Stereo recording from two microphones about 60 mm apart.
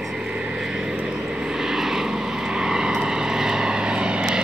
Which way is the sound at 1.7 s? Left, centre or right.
Centre.